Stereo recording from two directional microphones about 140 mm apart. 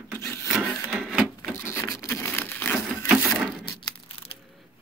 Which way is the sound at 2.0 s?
15° left (ahead or behind).